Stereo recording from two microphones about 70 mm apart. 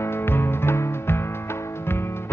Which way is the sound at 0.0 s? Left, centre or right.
Left.